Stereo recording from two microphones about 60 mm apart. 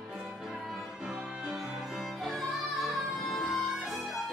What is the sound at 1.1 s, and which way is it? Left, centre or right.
Music, centre.